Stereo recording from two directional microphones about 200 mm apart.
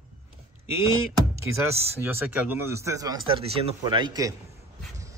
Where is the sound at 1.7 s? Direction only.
10° right (ahead or behind).